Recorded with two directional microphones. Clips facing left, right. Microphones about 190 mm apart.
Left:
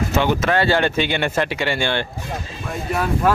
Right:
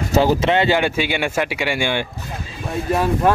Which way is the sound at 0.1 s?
35° right (ahead or behind).